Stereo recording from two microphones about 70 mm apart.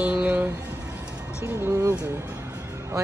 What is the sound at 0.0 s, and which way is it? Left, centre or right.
Music, centre.